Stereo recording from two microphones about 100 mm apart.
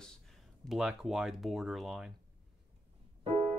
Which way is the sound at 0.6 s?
5° right (ahead or behind).